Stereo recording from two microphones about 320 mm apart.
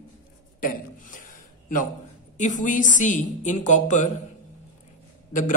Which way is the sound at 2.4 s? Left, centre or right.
Left.